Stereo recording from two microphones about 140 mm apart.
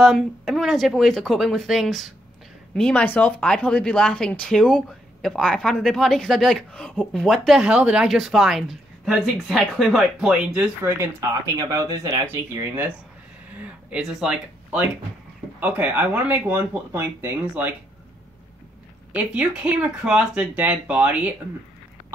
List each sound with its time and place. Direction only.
0.0 s speech: centre (ahead or behind)
10.8 s speech: 20° right (ahead or behind)
19.1 s speech: 10° right (ahead or behind)